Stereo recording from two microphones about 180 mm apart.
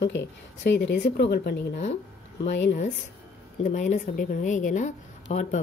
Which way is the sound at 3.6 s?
40° left (ahead or behind).